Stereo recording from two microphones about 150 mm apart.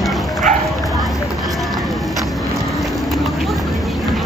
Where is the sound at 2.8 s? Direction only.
Centre (ahead or behind).